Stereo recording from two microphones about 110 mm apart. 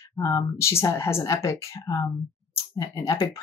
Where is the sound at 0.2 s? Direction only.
35° left (ahead or behind).